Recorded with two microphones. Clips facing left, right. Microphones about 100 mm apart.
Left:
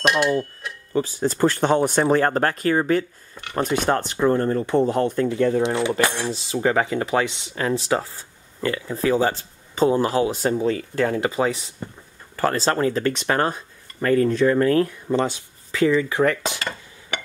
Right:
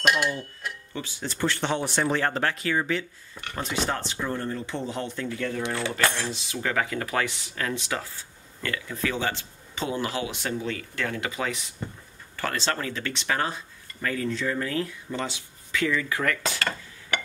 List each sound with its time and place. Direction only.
0.0 s a sound: centre (ahead or behind)
0.9 s speech: 40° left (ahead or behind)
5.6 s speech: 20° left (ahead or behind)
6.3 s speech: 30° left (ahead or behind)